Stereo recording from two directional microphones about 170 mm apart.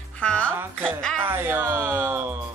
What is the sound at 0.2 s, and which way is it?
Music, 5° left (ahead or behind).